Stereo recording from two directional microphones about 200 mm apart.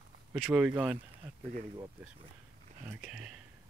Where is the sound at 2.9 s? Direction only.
5° right (ahead or behind).